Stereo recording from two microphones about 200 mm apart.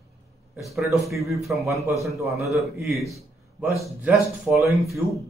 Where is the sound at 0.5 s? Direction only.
Centre (ahead or behind).